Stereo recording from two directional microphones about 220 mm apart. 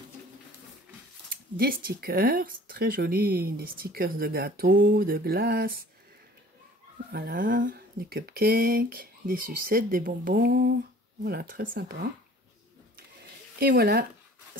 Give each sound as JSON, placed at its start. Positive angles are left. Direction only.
{"t": 1.3, "sound": "speech", "side_deg": -45}
{"t": 7.1, "sound": "speech", "side_deg": -45}
{"t": 13.6, "sound": "speech", "side_deg": -45}